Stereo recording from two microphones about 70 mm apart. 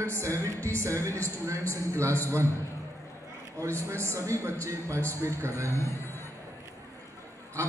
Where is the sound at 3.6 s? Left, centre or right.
Right.